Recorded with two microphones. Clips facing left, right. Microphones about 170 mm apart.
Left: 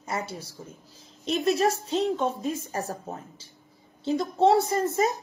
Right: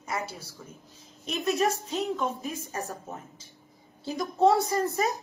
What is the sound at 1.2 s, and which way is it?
A woman's voice, 35° left (ahead or behind).